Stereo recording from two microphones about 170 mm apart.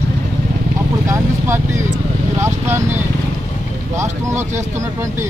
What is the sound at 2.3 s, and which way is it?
Speech, 15° right (ahead or behind).